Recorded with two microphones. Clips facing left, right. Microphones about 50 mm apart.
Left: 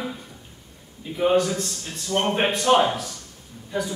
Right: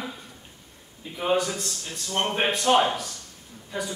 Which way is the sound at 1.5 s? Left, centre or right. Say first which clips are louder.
Left 4 dB; left.